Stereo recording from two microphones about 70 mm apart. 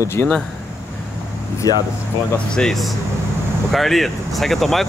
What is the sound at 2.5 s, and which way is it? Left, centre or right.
Speech, centre.